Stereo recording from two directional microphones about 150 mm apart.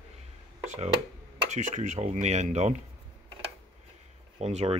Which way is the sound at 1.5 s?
55° right (ahead or behind).